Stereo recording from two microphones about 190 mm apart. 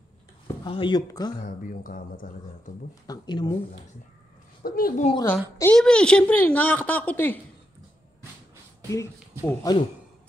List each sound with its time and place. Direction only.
0.7 s speech: 25° left (ahead or behind)
1.6 s speech: 45° left (ahead or behind)
2.9 s speech: 20° left (ahead or behind)
4.6 s speech: 50° left (ahead or behind)
5.2 s a woman's voice: 10° left (ahead or behind)
8.8 s speech: 15° left (ahead or behind)